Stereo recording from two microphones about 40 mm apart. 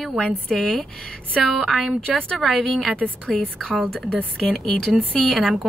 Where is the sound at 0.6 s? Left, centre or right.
Centre.